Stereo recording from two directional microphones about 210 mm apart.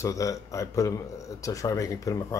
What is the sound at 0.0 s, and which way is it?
Speech, 15° left (ahead or behind).